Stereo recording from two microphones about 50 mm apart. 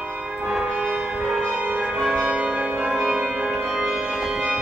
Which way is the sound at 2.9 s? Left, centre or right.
Centre.